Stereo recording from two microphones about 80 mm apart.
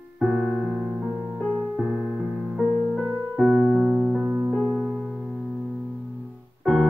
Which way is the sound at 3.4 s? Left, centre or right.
Right.